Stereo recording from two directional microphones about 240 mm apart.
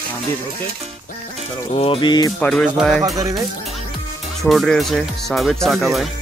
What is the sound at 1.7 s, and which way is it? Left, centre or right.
Music, left.